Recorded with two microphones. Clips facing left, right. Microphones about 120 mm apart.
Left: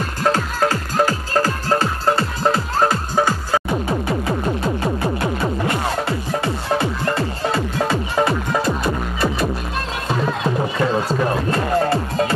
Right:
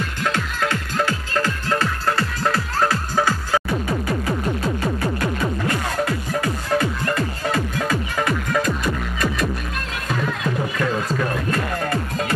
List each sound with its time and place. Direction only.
0.2 s music: 40° left (ahead or behind)